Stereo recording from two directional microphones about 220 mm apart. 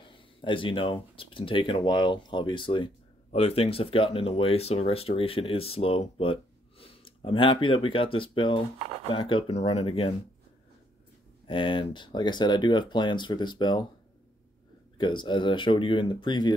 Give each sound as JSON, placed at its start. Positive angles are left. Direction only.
{"t": 0.0, "sound": "speech", "side_deg": 25}
{"t": 11.4, "sound": "speech", "side_deg": 25}
{"t": 15.0, "sound": "speech", "side_deg": 20}